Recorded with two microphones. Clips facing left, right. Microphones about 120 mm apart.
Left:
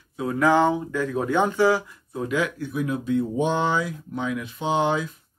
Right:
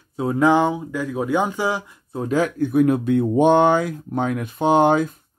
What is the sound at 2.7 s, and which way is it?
Speech, 55° right (ahead or behind).